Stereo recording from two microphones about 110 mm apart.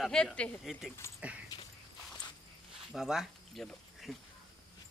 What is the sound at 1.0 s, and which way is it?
Speech, 25° left (ahead or behind).